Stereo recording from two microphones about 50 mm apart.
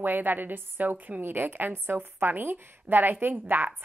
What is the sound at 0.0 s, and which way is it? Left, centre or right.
A woman's voice, right.